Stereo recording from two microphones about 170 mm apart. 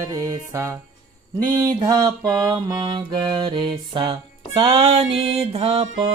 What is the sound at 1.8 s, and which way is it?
Music, 20° right (ahead or behind).